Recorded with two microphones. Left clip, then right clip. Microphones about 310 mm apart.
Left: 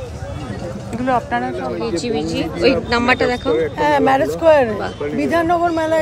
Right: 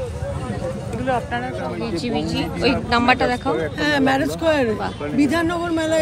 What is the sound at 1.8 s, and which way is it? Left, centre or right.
A woman's voice, centre.